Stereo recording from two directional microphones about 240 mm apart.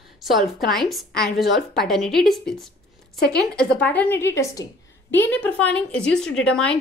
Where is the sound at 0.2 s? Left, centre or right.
Centre.